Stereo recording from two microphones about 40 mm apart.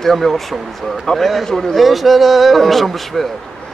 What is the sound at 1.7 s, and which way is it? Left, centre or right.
Speech, centre.